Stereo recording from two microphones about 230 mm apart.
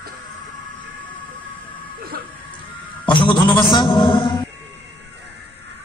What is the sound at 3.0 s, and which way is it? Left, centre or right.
A man's voice, left.